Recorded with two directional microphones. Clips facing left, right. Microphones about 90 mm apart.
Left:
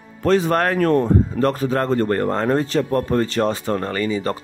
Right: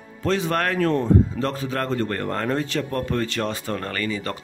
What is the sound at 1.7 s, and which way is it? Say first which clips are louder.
Speech: left 6 dB; 35° left (ahead or behind).